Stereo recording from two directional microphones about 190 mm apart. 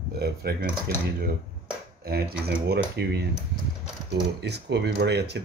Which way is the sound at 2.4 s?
60° right (ahead or behind).